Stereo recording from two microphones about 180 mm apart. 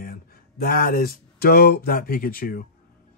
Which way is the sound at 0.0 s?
50° left (ahead or behind).